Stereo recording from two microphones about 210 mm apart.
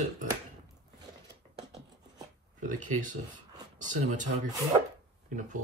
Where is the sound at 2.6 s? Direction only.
35° right (ahead or behind).